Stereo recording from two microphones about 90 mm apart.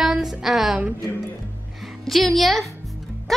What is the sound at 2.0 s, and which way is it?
Speech, centre (ahead or behind).